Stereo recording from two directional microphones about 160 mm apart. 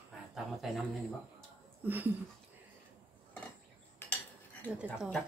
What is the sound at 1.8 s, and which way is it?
Speech, 10° right (ahead or behind).